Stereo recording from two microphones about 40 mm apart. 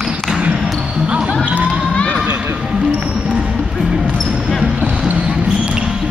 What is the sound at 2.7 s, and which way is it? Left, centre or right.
Music, centre.